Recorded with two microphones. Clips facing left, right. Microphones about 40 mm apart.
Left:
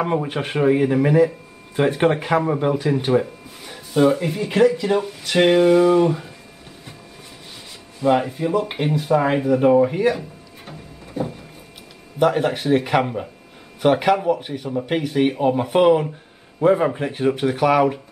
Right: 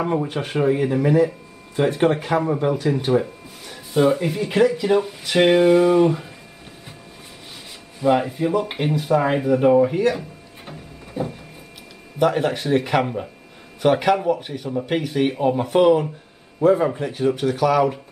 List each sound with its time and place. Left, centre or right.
0.0 s speech: centre
8.0 s speech: centre
10.6 s music: centre
12.2 s speech: centre
16.6 s speech: left